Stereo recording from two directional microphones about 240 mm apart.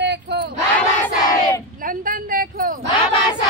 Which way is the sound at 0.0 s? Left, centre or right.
Right.